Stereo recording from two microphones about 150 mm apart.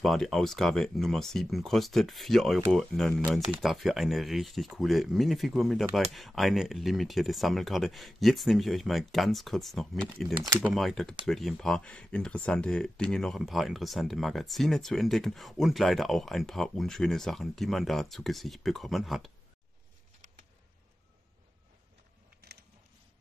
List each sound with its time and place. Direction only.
0.0 s speech: centre (ahead or behind)
10.3 s speech: 25° right (ahead or behind)
10.6 s speech: centre (ahead or behind)
22.4 s a sound: 90° right